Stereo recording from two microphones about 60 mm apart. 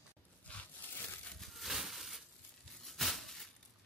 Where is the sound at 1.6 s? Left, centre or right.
Centre.